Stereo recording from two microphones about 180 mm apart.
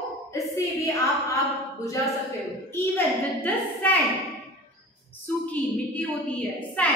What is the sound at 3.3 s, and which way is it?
Speech, 10° left (ahead or behind).